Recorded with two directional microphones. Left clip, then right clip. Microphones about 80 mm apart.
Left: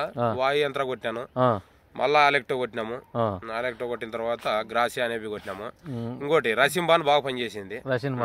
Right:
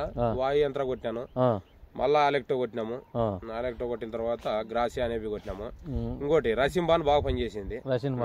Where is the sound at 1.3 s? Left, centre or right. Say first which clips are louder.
Left 3 dB; left.